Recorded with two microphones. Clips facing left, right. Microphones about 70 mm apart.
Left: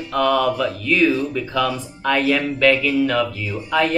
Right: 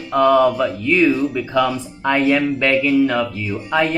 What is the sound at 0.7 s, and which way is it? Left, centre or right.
Speech, centre.